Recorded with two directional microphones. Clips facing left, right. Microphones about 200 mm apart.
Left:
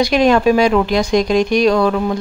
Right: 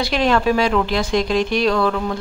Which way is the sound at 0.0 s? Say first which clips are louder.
Left 5 dB; 15° left (ahead or behind).